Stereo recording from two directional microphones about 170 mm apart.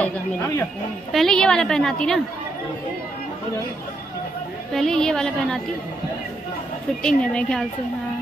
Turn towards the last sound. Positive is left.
turn(degrees=5)  # may be behind; listen again after turning